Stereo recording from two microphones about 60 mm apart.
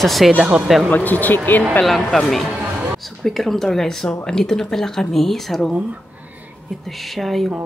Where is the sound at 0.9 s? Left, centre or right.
Left.